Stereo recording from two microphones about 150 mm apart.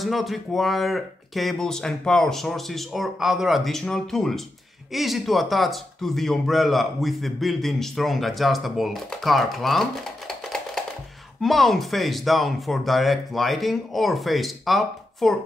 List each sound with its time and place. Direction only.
0.0 s speech: centre (ahead or behind)